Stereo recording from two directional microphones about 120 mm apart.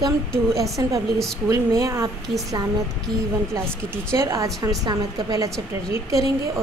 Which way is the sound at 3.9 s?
25° right (ahead or behind).